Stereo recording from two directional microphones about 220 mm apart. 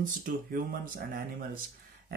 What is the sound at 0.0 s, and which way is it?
Speech, 40° right (ahead or behind).